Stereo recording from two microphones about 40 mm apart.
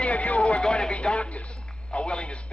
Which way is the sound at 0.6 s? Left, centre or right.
Left.